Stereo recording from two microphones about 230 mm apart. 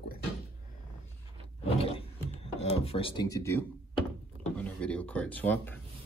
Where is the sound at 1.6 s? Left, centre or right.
Left.